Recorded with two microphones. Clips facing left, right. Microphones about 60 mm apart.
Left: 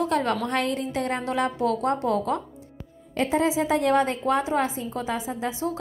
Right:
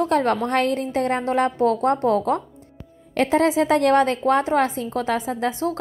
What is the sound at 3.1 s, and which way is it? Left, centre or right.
A woman's voice, right.